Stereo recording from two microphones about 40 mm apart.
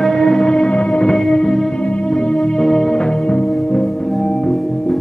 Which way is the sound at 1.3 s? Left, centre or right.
Centre.